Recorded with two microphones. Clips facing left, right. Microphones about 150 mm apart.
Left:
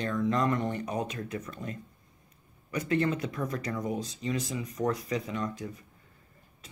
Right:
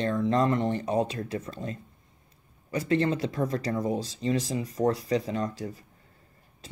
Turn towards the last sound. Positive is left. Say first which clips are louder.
# right 3 dB
turn(degrees=-35)  # may be behind; listen again after turning